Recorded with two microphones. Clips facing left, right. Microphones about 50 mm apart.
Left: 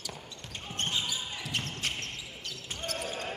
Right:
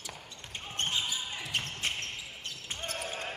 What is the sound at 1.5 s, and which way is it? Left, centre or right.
Basketball bounce, right.